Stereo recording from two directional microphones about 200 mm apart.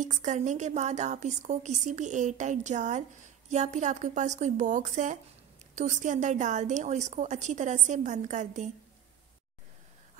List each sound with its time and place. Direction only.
0.0 s a woman's voice: 40° right (ahead or behind)